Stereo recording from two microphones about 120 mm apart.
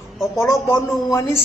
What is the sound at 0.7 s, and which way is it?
Speech, 30° left (ahead or behind).